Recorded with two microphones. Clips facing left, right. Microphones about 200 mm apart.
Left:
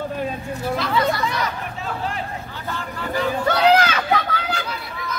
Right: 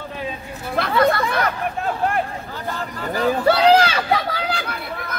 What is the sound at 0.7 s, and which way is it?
Hubbub, 55° right (ahead or behind).